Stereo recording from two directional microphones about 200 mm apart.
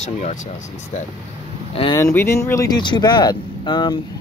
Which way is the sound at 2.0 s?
10° left (ahead or behind).